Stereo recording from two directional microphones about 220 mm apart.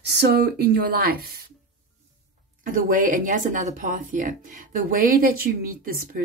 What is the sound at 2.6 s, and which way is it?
Speech, 40° right (ahead or behind).